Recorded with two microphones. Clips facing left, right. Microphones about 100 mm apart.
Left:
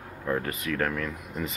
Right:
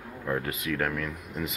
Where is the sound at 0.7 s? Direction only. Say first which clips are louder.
Left 1 dB; 5° right (ahead or behind).